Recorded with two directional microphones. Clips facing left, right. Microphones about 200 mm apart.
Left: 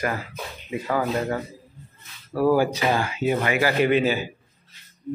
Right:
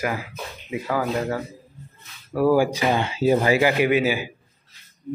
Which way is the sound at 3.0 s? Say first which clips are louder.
Right 4 dB; 30° right (ahead or behind).